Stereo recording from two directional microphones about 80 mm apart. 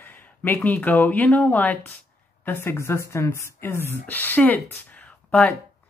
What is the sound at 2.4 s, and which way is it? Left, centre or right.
Speech, left.